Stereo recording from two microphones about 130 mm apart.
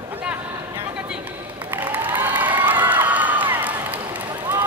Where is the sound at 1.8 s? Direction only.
15° right (ahead or behind).